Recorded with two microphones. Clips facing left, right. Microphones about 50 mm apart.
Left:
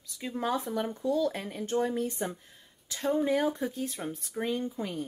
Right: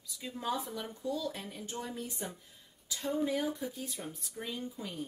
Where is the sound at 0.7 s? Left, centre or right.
Left.